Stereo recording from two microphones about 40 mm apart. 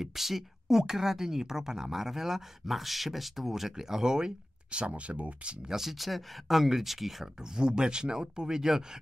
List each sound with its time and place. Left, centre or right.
0.0 s speech: centre
4.6 s speech: right
5.7 s speech: centre
7.5 s speech: centre